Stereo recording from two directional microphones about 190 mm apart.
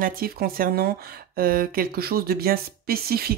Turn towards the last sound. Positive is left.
turn(degrees=-55)  # may be behind; listen again after turning